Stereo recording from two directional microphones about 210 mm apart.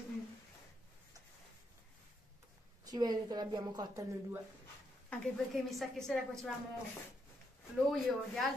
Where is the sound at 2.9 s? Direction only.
20° right (ahead or behind).